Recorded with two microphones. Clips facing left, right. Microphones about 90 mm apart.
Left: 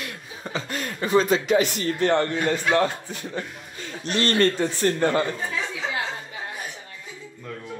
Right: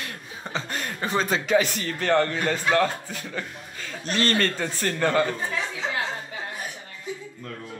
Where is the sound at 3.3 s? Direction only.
35° left (ahead or behind).